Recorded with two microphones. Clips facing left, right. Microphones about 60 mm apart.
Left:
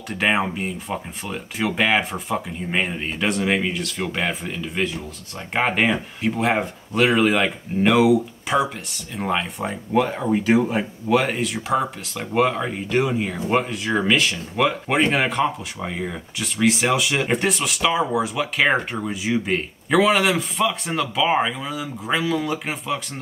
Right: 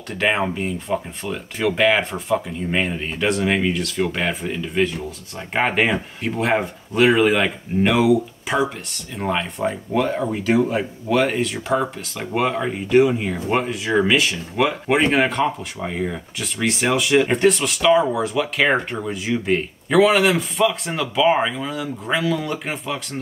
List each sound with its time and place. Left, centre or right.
0.2 s speech: centre